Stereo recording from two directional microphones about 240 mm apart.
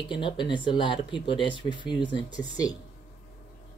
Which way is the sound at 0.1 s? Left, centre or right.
Centre.